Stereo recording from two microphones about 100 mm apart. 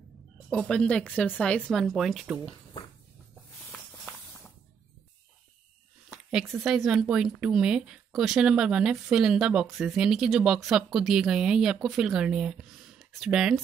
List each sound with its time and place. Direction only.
0.5 s speech: 10° left (ahead or behind)
3.7 s walk: 15° left (ahead or behind)
6.3 s speech: centre (ahead or behind)